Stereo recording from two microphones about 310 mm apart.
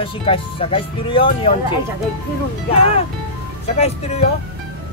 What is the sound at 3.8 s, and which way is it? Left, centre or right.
Speech, centre.